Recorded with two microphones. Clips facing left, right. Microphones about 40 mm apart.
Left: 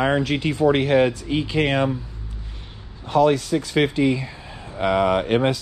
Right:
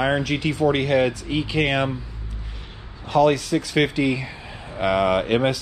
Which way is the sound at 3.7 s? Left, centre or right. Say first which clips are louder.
Left 2 dB; right.